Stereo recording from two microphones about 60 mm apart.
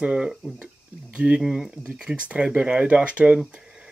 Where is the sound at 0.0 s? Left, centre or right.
Centre.